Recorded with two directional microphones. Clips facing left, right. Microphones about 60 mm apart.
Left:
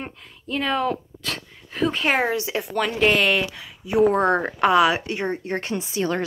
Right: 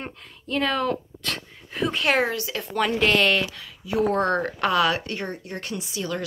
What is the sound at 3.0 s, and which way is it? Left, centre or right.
Speech, centre.